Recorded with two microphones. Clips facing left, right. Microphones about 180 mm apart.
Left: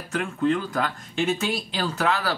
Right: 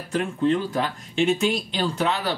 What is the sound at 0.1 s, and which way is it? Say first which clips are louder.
Speech: right 2 dB; 30° right (ahead or behind).